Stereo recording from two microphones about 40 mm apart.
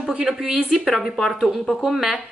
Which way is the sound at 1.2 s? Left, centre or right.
Centre.